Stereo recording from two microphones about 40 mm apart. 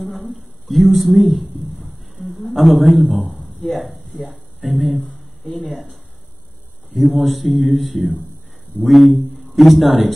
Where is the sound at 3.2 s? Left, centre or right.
Centre.